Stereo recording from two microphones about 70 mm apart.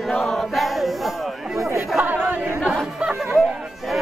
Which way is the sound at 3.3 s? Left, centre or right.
Centre.